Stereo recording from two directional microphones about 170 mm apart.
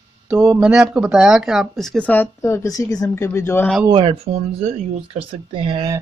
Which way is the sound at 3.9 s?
30° right (ahead or behind).